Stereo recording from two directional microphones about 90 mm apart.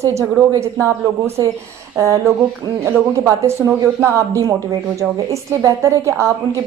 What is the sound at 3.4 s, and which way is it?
A woman's voice, 30° right (ahead or behind).